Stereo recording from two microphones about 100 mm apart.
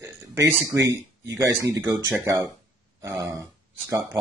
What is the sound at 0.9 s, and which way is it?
Speech, 35° right (ahead or behind).